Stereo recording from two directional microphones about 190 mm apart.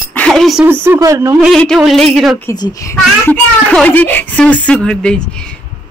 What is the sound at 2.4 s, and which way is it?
A child's voice, 15° left (ahead or behind).